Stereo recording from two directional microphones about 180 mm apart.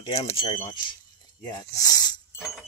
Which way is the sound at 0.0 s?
25° left (ahead or behind).